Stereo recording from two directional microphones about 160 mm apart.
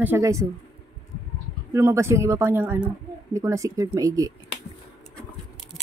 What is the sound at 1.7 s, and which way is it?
Speech, 20° right (ahead or behind).